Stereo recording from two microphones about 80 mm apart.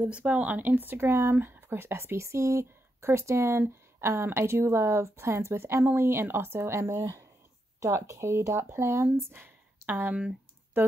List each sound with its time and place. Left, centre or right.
0.0 s speech: centre